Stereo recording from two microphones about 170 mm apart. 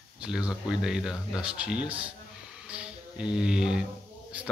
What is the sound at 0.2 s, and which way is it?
Speech, 5° right (ahead or behind).